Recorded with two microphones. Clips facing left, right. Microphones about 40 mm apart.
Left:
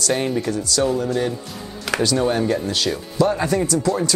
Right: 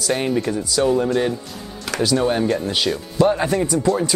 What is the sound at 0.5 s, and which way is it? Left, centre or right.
Speech, centre.